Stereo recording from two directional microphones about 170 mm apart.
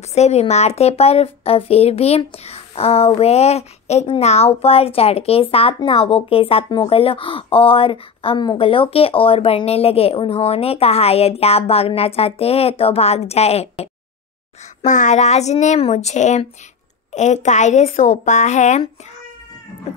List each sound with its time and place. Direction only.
0.1 s speech: 40° left (ahead or behind)